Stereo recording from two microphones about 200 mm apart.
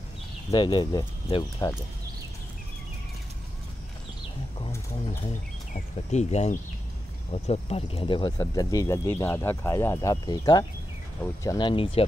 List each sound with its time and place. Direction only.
0.5 s speech: 20° left (ahead or behind)
5.7 s speech: 35° left (ahead or behind)